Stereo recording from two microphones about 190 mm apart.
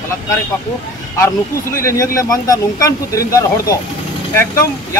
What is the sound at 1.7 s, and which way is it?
A man's voice, 15° left (ahead or behind).